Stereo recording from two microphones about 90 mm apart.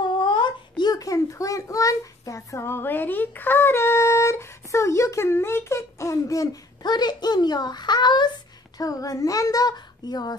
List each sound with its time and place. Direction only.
0.2 s a child's voice: 60° left (ahead or behind)
8.7 s a child's voice: 40° left (ahead or behind)